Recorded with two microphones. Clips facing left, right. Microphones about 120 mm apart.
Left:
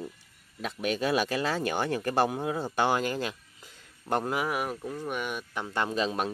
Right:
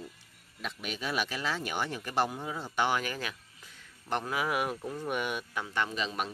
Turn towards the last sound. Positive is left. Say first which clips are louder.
# left 6 dB
turn(degrees=35)  # may be behind; listen again after turning